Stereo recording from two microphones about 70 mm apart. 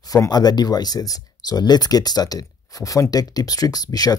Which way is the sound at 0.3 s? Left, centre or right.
Left.